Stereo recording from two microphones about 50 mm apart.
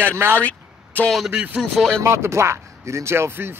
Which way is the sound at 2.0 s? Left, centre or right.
Right.